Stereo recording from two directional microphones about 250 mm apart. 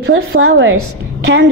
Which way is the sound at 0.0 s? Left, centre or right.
Right.